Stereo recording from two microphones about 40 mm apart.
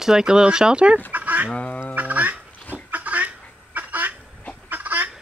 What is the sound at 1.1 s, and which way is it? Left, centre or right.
Duck, right.